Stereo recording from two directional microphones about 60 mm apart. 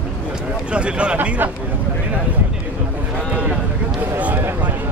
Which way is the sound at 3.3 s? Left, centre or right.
Centre.